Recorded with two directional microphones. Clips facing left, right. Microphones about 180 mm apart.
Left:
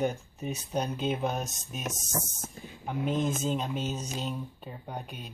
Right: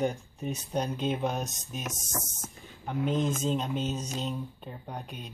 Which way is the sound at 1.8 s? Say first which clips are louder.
Left 2 dB; 30° left (ahead or behind).